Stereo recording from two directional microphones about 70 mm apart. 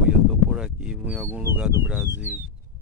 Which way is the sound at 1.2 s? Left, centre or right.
Right.